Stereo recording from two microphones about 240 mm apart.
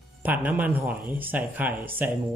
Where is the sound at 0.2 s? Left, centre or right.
Centre.